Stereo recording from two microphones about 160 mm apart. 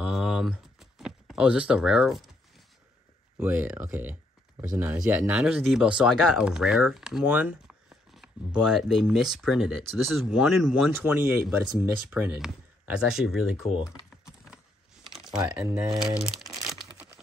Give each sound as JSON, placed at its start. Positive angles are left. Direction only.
{"t": 0.0, "sound": "a sound", "side_deg": -5}
{"t": 3.3, "sound": "speech", "side_deg": -10}
{"t": 3.9, "sound": "typing", "side_deg": -10}
{"t": 4.7, "sound": "speech", "side_deg": -10}
{"t": 10.9, "sound": "speech", "side_deg": -10}
{"t": 15.0, "sound": "typing", "side_deg": -5}
{"t": 15.6, "sound": "speech", "side_deg": -15}
{"t": 16.3, "sound": "crumpling", "side_deg": 0}
{"t": 16.5, "sound": "crumpling", "side_deg": -20}